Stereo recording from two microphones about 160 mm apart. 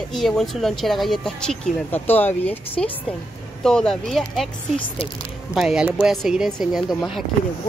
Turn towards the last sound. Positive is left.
turn(degrees=0)  # may be behind; listen again after turning